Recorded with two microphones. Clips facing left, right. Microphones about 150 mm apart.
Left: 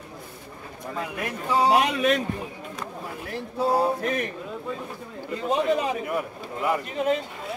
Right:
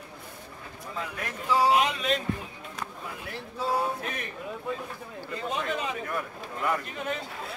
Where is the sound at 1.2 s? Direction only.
20° left (ahead or behind).